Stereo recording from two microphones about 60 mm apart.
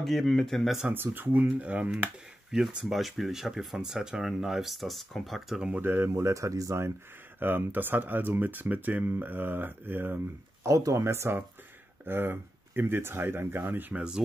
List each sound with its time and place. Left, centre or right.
0.0 s speech: centre
0.8 s speech: right
2.5 s speech: centre
5.8 s speech: right
6.2 s speech: right
7.3 s speech: right
10.6 s speech: right
13.9 s speech: centre